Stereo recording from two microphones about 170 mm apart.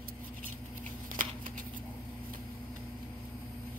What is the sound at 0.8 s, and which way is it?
Scissors, 50° right (ahead or behind).